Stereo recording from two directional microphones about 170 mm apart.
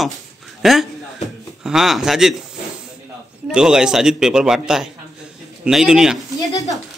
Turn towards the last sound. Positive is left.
turn(degrees=20)  # may be behind; listen again after turning